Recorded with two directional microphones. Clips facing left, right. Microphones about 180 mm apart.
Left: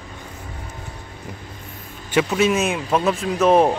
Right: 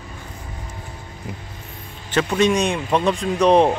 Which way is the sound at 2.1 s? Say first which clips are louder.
Even; 10° left (ahead or behind).